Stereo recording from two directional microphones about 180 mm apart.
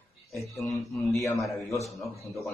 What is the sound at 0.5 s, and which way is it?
Speech, centre (ahead or behind).